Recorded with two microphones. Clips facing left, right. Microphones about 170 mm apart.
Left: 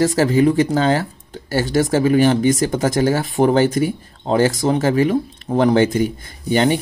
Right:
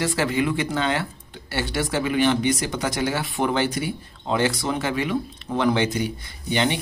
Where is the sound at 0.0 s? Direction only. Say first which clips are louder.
Left 8 dB; 40° left (ahead or behind).